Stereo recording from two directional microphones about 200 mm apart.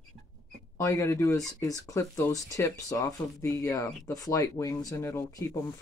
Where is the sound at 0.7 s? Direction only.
15° left (ahead or behind).